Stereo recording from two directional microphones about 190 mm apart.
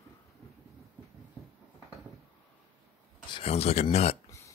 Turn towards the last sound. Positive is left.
turn(degrees=35)  # may be behind; listen again after turning